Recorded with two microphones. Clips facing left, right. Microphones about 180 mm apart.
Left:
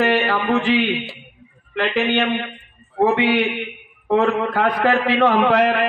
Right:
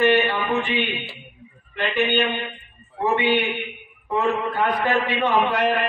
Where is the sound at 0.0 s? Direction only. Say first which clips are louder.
Left 1 dB; 90° left.